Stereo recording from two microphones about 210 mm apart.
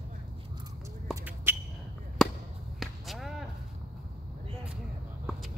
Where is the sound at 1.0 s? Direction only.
10° right (ahead or behind).